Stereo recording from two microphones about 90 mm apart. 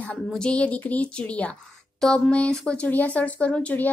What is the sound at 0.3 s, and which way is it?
A woman's voice, 10° left (ahead or behind).